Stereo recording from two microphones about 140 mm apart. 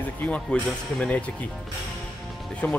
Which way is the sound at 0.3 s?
5° left (ahead or behind).